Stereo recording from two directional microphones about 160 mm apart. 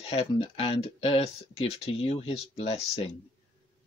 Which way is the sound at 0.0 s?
40° left (ahead or behind).